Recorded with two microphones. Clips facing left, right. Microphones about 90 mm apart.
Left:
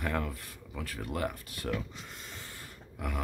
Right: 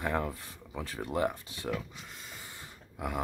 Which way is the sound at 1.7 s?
Centre (ahead or behind).